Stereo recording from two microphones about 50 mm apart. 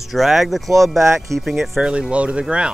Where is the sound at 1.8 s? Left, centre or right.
Right.